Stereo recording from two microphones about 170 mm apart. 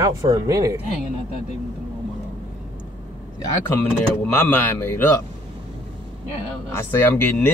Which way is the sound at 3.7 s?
10° left (ahead or behind).